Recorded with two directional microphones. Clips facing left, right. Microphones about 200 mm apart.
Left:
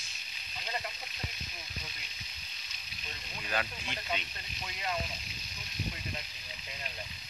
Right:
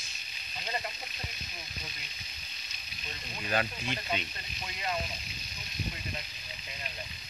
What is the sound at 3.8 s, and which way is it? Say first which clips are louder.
Speech: right 3 dB; 10° right (ahead or behind).